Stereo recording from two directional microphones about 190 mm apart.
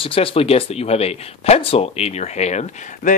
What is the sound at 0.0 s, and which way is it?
Speech, 30° left (ahead or behind).